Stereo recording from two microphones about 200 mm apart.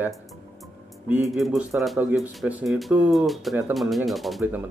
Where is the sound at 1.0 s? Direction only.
10° right (ahead or behind).